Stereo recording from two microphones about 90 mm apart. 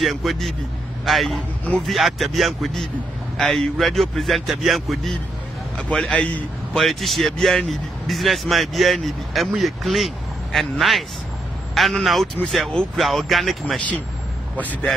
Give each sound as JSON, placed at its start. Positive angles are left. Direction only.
{"t": 0.0, "sound": "speech", "side_deg": 0}
{"t": 5.8, "sound": "a man's voice", "side_deg": 10}
{"t": 6.7, "sound": "speech", "side_deg": 5}
{"t": 14.6, "sound": "a man's voice", "side_deg": 20}